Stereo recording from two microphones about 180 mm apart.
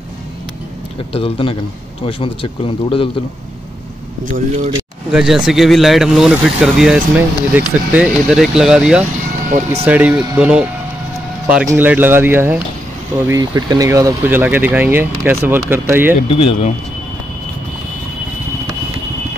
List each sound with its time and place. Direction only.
1.1 s speech: 30° left (ahead or behind)
5.1 s speech: 5° right (ahead or behind)
16.2 s speech: 30° left (ahead or behind)